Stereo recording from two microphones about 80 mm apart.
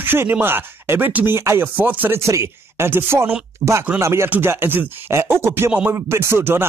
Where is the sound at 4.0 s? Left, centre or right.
Right.